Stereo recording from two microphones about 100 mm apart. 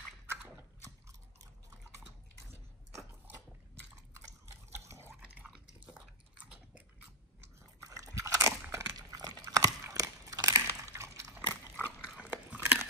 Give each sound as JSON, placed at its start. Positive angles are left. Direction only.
{"t": 2.5, "sound": "biting", "side_deg": -30}
{"t": 4.7, "sound": "water", "side_deg": -30}
{"t": 5.2, "sound": "a sound", "side_deg": -10}
{"t": 7.8, "sound": "crunch", "side_deg": -35}
{"t": 11.3, "sound": "dog", "side_deg": -20}
{"t": 12.2, "sound": "biting", "side_deg": -15}